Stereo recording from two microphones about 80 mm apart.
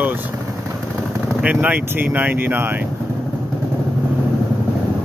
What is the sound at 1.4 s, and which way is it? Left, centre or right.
Speech, centre.